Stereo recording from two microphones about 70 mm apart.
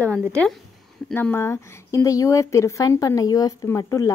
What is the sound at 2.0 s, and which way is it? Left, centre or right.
Speech, left.